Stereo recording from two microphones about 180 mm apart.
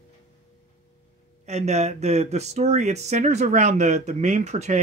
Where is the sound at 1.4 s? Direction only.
40° right (ahead or behind).